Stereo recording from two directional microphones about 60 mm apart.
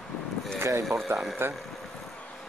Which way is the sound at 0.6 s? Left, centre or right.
Right.